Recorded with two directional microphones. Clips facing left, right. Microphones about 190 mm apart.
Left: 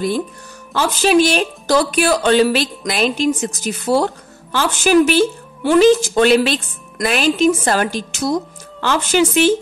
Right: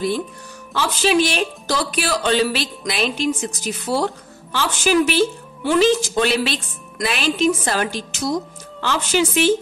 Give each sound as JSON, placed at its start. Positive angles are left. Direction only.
{"t": 0.7, "sound": "speech", "side_deg": 45}